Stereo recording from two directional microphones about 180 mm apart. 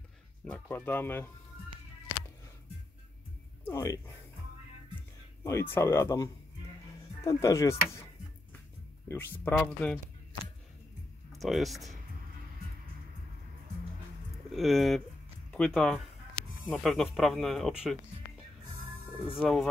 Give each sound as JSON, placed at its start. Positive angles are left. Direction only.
{"t": 0.5, "sound": "speech", "side_deg": 10}
{"t": 3.6, "sound": "speech", "side_deg": 20}
{"t": 5.4, "sound": "speech", "side_deg": 15}
{"t": 9.0, "sound": "speech", "side_deg": 10}
{"t": 11.3, "sound": "speech", "side_deg": 0}
{"t": 14.3, "sound": "speech", "side_deg": 0}
{"t": 19.2, "sound": "speech", "side_deg": 0}